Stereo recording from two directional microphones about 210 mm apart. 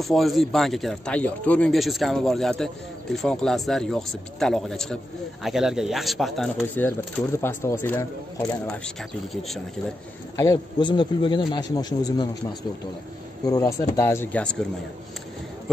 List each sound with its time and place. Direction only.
0.0 s a man's voice: centre (ahead or behind)
10.3 s a man's voice: 15° left (ahead or behind)
13.5 s speech: 15° left (ahead or behind)